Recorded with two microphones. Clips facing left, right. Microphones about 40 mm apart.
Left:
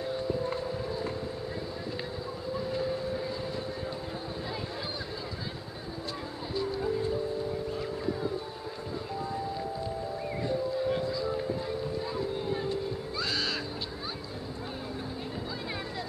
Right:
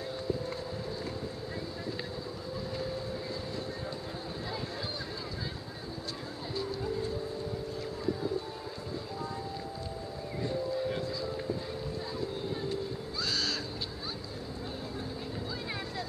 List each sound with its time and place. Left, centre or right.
0.0 s a sound: centre
2.7 s train: centre
6.5 s music: centre
10.4 s music: centre
13.2 s owl: centre